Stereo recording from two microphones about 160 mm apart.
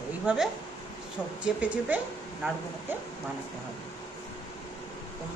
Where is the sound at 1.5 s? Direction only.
10° right (ahead or behind).